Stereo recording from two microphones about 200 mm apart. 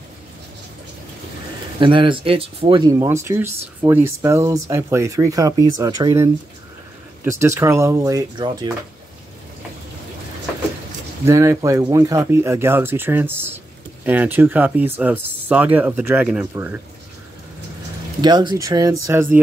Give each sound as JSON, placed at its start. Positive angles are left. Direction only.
{"t": 1.8, "sound": "speech", "side_deg": -25}
{"t": 11.2, "sound": "speech", "side_deg": -15}
{"t": 18.2, "sound": "speech", "side_deg": -20}